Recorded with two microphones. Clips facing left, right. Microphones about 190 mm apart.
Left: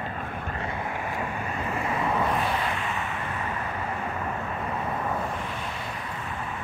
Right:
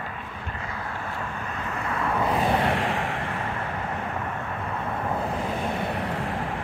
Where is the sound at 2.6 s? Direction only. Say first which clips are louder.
Right 5 dB; 85° right.